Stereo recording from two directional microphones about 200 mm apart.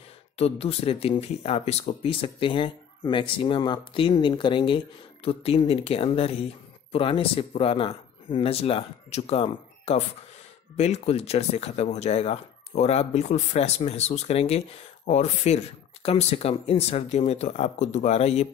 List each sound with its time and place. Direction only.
0.4 s speech: 30° left (ahead or behind)